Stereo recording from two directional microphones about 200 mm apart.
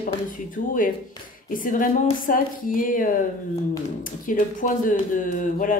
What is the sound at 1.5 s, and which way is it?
Speech, 45° left (ahead or behind).